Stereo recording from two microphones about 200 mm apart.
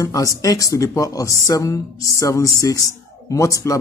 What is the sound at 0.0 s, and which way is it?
Speech, 15° left (ahead or behind).